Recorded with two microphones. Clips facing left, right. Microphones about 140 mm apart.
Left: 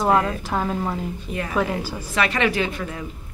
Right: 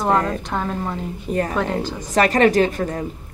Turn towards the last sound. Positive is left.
turn(degrees=-45)  # may be behind; listen again after turning